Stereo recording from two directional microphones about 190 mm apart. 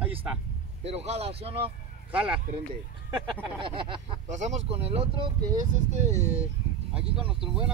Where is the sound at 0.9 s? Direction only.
35° right (ahead or behind).